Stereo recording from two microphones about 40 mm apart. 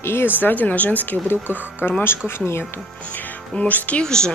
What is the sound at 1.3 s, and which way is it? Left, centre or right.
Speech, left.